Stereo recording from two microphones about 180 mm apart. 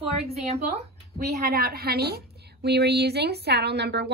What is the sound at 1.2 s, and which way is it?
A woman's voice, 60° right (ahead or behind).